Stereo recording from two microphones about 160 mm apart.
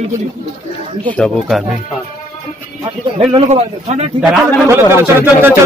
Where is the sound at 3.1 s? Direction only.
40° right (ahead or behind).